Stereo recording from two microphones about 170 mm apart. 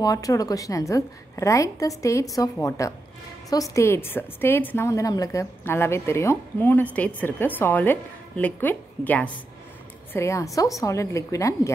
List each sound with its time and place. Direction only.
0.0 s a woman's voice: 20° left (ahead or behind)